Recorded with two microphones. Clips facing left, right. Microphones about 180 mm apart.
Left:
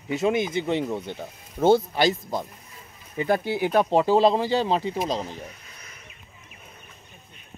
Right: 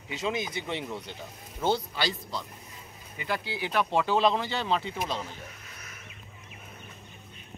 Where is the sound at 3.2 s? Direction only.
45° left (ahead or behind).